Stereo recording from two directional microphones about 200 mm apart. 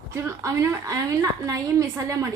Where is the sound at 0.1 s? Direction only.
15° right (ahead or behind).